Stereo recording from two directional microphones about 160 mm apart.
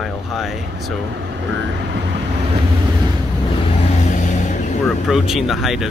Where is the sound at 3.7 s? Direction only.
45° left (ahead or behind).